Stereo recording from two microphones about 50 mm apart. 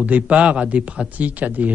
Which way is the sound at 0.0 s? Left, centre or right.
Right.